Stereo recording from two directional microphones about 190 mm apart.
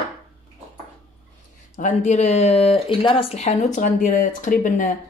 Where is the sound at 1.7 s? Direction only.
40° left (ahead or behind).